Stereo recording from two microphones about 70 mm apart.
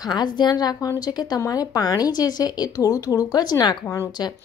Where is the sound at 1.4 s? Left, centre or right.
Left.